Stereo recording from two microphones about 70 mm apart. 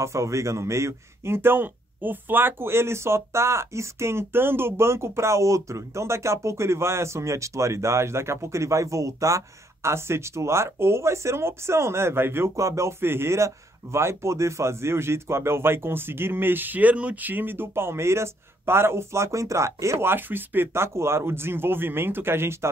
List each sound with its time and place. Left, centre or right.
0.0 s speech: right
12.5 s speech: right